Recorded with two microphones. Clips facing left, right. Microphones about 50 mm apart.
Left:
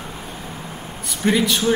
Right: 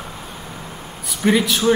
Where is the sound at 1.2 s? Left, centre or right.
Centre.